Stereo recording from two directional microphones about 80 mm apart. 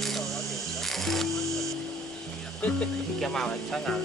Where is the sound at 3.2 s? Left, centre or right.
Centre.